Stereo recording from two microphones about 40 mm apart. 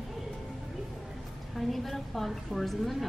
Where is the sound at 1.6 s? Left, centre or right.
Centre.